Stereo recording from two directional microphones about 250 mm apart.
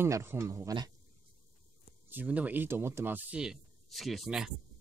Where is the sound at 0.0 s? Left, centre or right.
Centre.